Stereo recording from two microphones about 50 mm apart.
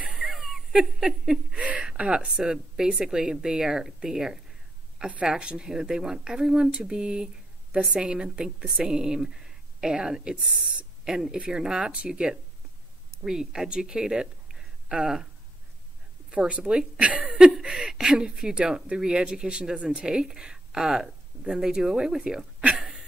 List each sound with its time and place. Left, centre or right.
0.0 s a sound: centre
2.0 s speech: centre
4.9 s speech: centre
16.3 s speech: right
17.2 s speech: centre
22.8 s a sound: centre